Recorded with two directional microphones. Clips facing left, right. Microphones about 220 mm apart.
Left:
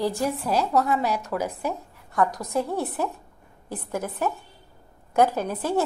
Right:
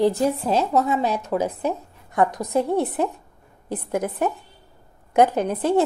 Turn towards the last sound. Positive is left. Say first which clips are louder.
# right 5 dB
turn(degrees=-20)  # may be behind; listen again after turning